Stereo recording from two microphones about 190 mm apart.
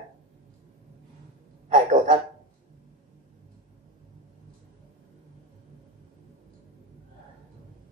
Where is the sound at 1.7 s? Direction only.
40° right (ahead or behind).